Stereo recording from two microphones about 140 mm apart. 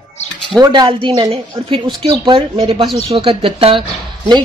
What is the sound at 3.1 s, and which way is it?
A woman's voice, 40° right (ahead or behind).